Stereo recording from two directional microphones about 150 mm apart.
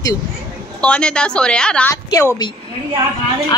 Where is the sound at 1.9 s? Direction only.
20° left (ahead or behind).